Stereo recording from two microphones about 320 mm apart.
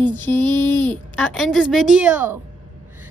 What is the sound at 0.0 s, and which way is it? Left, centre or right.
A woman's voice, centre.